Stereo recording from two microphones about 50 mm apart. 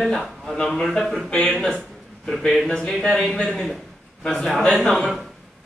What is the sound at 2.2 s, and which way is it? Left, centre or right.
A man's voice, centre.